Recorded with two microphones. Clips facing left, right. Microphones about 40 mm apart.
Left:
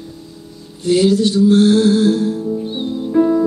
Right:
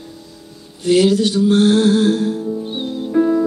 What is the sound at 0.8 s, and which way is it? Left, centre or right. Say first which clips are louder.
Music: even; right.